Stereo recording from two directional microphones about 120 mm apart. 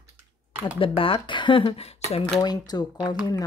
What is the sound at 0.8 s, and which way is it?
Speech, 50° left (ahead or behind).